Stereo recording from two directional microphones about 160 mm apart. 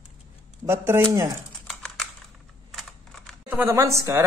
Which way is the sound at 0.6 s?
15° right (ahead or behind).